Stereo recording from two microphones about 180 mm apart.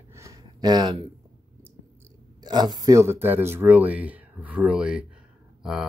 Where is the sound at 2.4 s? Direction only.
25° right (ahead or behind).